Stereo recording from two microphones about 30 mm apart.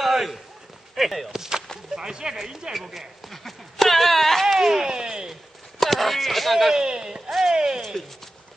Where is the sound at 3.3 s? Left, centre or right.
Centre.